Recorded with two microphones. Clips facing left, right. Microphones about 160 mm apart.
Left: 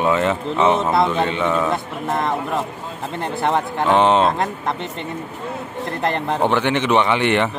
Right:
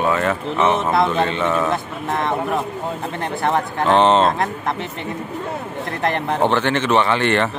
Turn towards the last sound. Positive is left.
turn(degrees=15)  # may be behind; listen again after turning